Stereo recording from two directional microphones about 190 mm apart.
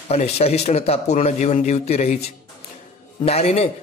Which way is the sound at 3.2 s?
35° left (ahead or behind).